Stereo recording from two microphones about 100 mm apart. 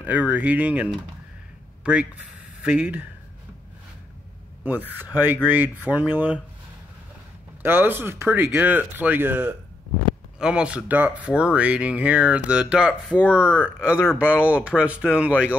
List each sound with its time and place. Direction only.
0.0 s speech: 15° right (ahead or behind)
4.6 s speech: 20° right (ahead or behind)
7.6 s speech: 20° right (ahead or behind)